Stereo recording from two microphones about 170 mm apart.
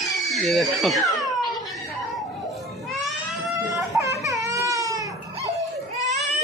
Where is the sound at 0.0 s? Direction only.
Centre (ahead or behind).